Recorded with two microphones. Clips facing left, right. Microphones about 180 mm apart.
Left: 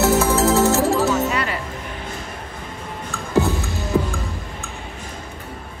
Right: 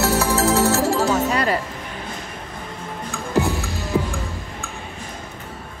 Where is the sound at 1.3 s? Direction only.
40° right (ahead or behind).